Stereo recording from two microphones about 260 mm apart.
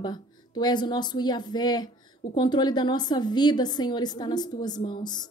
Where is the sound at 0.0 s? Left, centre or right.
Centre.